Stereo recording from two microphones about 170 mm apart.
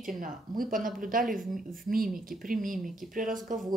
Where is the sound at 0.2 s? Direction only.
55° right (ahead or behind).